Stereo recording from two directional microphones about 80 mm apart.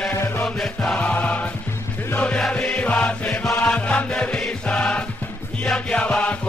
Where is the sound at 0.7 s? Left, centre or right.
Centre.